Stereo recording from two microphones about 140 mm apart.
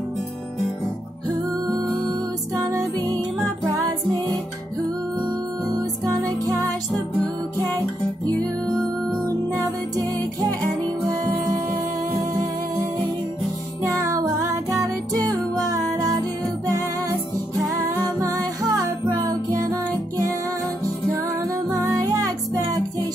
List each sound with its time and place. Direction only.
2.5 s music: 20° right (ahead or behind)
6.1 s music: 25° right (ahead or behind)
8.3 s music: 10° left (ahead or behind)
9.6 s music: 25° right (ahead or behind)
13.8 s music: 25° right (ahead or behind)
18.4 s music: 25° right (ahead or behind)
21.6 s music: 25° right (ahead or behind)